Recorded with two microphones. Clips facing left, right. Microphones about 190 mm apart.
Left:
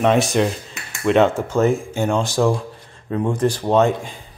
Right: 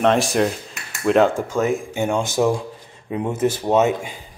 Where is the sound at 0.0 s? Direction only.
Centre (ahead or behind).